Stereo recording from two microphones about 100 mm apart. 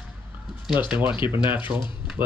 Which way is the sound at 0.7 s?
15° right (ahead or behind).